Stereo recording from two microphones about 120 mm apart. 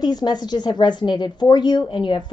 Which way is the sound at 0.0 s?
35° left (ahead or behind).